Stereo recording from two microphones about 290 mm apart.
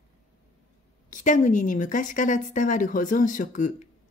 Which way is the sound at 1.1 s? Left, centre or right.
Left.